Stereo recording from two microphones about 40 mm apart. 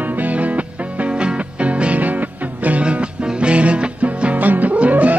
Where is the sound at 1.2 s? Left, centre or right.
Right.